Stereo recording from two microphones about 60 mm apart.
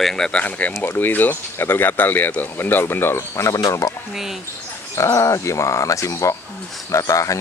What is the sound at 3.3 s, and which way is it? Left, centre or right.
Speech, left.